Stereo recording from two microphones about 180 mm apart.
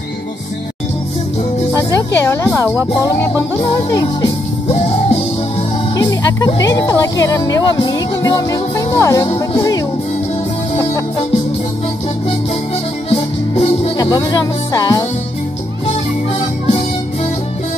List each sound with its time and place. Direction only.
1.7 s speech: 20° left (ahead or behind)
3.6 s speech: 25° left (ahead or behind)
4.6 s music: 35° left (ahead or behind)
5.9 s speech: 20° left (ahead or behind)
13.1 s music: 30° left (ahead or behind)